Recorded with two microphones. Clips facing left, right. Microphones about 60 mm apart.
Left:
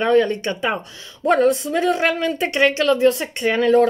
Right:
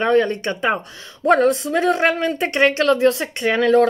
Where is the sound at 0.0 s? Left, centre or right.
Right.